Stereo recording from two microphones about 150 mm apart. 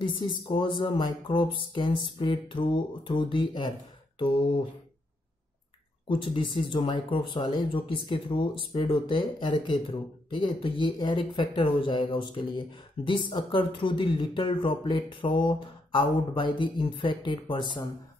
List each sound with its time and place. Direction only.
0.0 s speech: 35° left (ahead or behind)
6.0 s speech: 35° left (ahead or behind)